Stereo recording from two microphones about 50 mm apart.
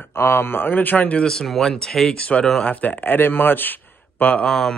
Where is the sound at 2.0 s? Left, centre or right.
Left.